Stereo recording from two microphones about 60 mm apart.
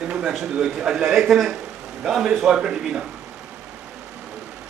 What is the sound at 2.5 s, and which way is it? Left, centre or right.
Speech, centre.